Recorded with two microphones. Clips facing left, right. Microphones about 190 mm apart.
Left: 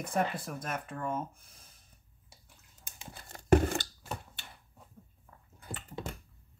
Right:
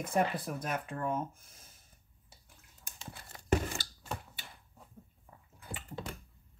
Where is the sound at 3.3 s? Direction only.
55° left (ahead or behind).